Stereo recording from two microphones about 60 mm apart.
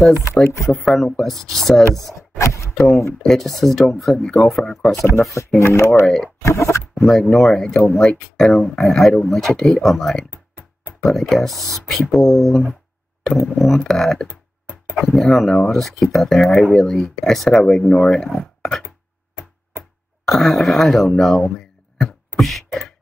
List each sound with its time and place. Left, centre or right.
0.7 s speech: centre
2.3 s speech: left
3.2 s speech: centre
5.6 s speech: left
6.0 s speech: centre
6.4 s a sound: left
7.0 s speech: centre
10.3 s music: right
11.1 s speech: centre
20.2 s speech: centre
22.4 s beatboxing: centre